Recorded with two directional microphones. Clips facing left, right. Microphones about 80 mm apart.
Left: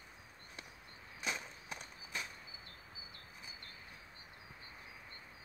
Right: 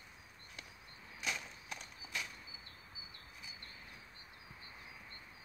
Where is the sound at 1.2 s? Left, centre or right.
Left.